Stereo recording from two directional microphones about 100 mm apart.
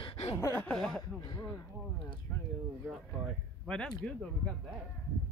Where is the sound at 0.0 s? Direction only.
65° left (ahead or behind).